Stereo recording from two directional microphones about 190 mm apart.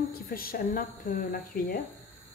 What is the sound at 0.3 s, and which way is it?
A woman's voice, 50° left (ahead or behind).